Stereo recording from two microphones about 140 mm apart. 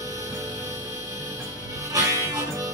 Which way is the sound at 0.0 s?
25° right (ahead or behind).